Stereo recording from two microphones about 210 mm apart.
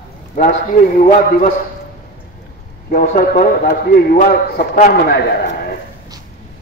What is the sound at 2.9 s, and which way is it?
A man's voice, 40° left (ahead or behind).